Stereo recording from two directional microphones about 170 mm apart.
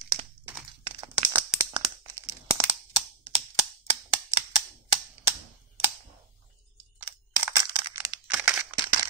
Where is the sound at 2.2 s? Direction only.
15° right (ahead or behind).